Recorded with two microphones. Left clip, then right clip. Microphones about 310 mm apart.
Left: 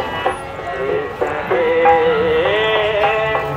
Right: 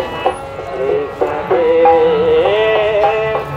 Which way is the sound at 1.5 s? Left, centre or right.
Right.